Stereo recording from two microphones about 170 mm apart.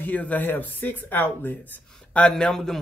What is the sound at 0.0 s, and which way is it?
A man's voice, 10° left (ahead or behind).